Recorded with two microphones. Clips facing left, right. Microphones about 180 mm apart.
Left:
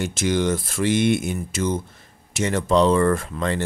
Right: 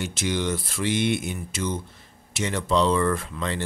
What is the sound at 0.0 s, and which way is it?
Speech, 45° left (ahead or behind).